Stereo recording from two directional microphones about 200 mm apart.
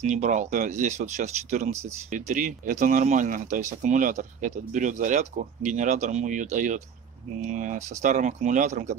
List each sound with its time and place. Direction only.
0.0 s speech: 35° right (ahead or behind)